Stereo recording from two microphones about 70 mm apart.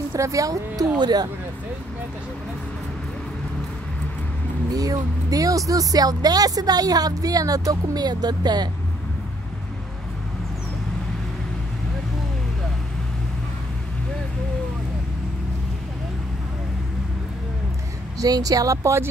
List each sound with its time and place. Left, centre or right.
0.1 s speech: right
4.7 s speech: right
18.2 s speech: right